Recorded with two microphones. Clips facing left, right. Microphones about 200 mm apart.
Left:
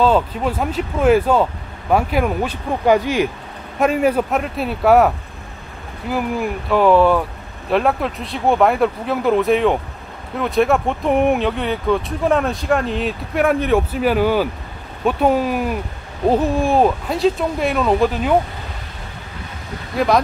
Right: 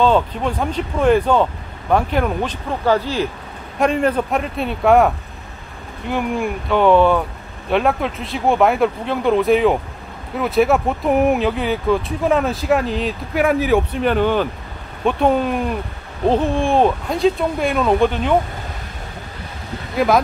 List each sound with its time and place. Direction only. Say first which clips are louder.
0.0 s speech: even; 5° left (ahead or behind)
20.0 s speech: right 1 dB; centre (ahead or behind)